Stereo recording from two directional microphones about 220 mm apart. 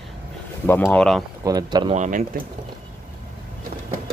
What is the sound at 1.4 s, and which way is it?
Speech, 20° right (ahead or behind).